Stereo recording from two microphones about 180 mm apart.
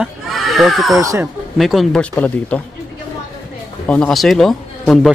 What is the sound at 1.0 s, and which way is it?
Speech, 15° right (ahead or behind).